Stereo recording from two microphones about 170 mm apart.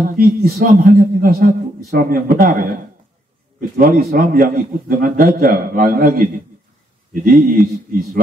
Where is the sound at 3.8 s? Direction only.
60° right (ahead or behind).